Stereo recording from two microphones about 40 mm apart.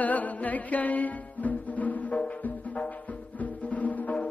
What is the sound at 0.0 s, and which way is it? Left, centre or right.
Music, left.